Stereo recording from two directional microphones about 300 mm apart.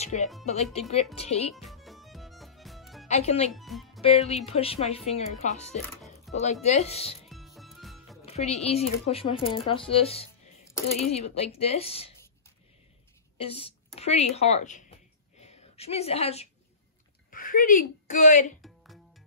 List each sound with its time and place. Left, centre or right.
0.0 s speech: left
1.5 s music: centre
3.1 s speech: left
3.5 s speech: centre
4.0 s speech: left
7.2 s music: centre
8.3 s music: left
8.6 s speech: centre
13.4 s speech: centre